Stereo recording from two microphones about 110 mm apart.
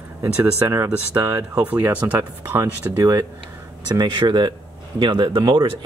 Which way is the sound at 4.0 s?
45° right (ahead or behind).